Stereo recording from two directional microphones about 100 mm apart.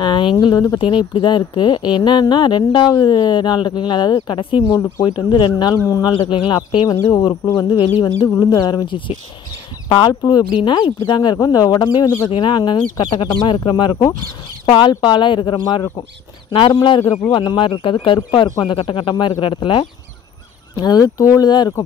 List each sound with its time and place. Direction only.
0.0 s speech: 55° left (ahead or behind)
4.7 s speech: 30° left (ahead or behind)
5.0 s speech: 50° left (ahead or behind)
5.9 s speech: 35° left (ahead or behind)
6.1 s speech: 55° left (ahead or behind)
8.4 s speech: 40° left (ahead or behind)
12.3 s speech: 55° left (ahead or behind)
17.3 s speech: 55° left (ahead or behind)
18.8 s speech: 65° left (ahead or behind)
20.7 s speech: 45° left (ahead or behind)